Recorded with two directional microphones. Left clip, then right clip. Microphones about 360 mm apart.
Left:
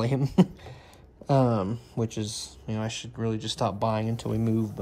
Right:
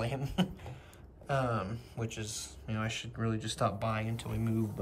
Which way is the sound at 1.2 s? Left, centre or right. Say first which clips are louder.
Left 8 dB; centre.